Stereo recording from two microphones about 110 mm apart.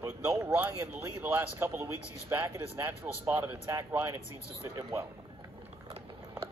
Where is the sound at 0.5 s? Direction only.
20° right (ahead or behind).